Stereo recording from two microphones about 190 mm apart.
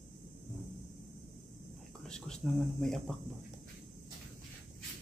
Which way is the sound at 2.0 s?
5° left (ahead or behind).